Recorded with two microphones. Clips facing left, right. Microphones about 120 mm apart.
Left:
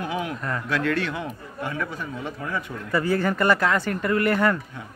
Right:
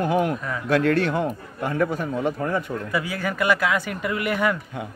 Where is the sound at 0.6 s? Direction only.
50° right (ahead or behind).